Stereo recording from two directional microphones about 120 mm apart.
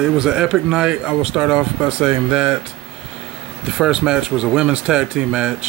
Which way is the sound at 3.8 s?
5° right (ahead or behind).